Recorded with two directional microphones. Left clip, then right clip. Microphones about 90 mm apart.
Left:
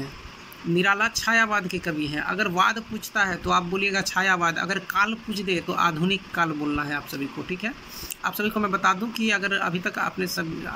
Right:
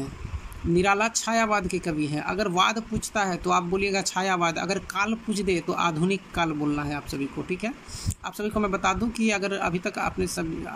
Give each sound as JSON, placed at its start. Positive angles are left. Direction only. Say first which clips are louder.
{"t": 0.7, "sound": "speech", "louder": "left 1 dB", "side_deg": -35}
{"t": 8.2, "sound": "speech", "louder": "left 3 dB", "side_deg": -30}